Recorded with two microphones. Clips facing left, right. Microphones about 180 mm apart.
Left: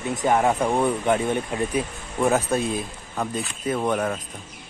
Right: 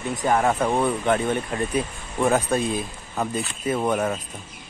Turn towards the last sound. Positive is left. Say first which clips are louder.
# right 1 dB
turn(degrees=-5)  # may be behind; listen again after turning